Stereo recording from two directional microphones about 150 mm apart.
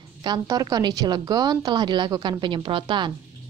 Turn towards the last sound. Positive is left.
turn(degrees=-30)  # may be behind; listen again after turning